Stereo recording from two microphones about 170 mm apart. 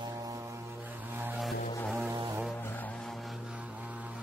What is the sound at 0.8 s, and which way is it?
Vehicle, 10° right (ahead or behind).